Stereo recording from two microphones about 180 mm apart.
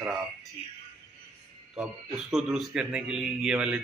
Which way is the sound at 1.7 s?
Centre (ahead or behind).